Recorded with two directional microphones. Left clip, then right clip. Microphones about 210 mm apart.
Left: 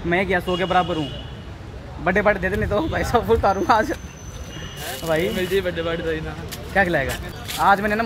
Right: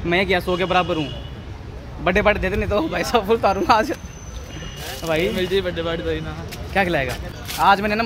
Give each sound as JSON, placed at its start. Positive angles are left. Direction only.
{"t": 0.1, "sound": "speech", "side_deg": -5}
{"t": 2.0, "sound": "speech", "side_deg": 0}
{"t": 2.8, "sound": "speech", "side_deg": 5}
{"t": 5.3, "sound": "speech", "side_deg": -20}
{"t": 6.7, "sound": "speech", "side_deg": 0}